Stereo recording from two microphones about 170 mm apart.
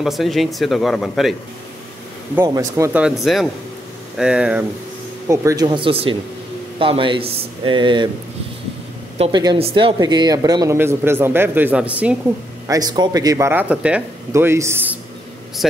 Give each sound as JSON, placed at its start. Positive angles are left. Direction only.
{"t": 0.0, "sound": "speech", "side_deg": 0}
{"t": 2.4, "sound": "speech", "side_deg": -20}
{"t": 2.9, "sound": "speech", "side_deg": -5}
{"t": 5.3, "sound": "speech", "side_deg": -15}
{"t": 9.3, "sound": "speech", "side_deg": -25}
{"t": 12.6, "sound": "speech", "side_deg": -20}
{"t": 15.6, "sound": "speech", "side_deg": 0}